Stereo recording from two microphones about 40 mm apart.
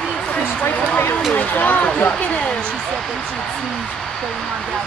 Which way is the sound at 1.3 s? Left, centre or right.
Left.